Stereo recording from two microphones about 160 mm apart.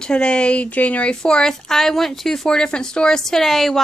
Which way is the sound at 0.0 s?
5° left (ahead or behind).